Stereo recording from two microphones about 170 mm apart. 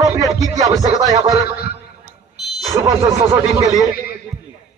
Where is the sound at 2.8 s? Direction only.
20° right (ahead or behind).